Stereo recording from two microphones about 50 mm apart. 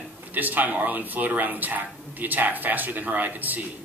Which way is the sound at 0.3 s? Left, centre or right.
Right.